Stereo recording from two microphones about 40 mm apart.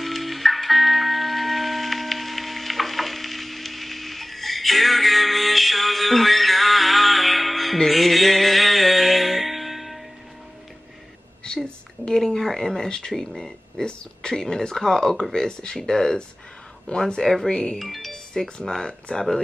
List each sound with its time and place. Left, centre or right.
0.0 s music: centre
11.4 s a sound: left
13.1 s speech: centre
17.2 s speech: centre
17.5 s speech: left
17.7 s speech: centre